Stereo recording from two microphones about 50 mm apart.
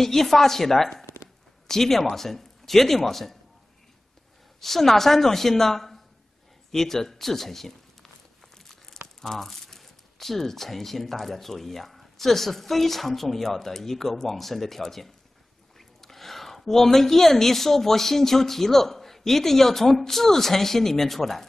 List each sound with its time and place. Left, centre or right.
0.0 s speech: centre
1.0 s a sound: left
1.7 s speech: centre
4.6 s speech: centre
9.2 s speech: centre